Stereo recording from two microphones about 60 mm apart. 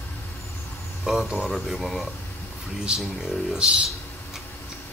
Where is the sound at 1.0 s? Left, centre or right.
Centre.